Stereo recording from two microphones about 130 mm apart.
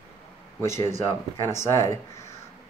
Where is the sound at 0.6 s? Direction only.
20° left (ahead or behind).